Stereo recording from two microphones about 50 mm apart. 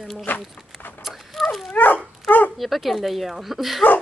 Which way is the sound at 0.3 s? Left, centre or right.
Left.